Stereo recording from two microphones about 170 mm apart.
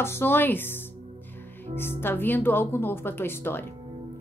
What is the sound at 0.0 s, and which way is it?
A woman's voice, 15° left (ahead or behind).